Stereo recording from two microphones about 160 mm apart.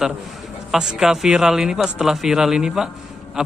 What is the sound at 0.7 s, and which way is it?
A man's voice, 5° right (ahead or behind).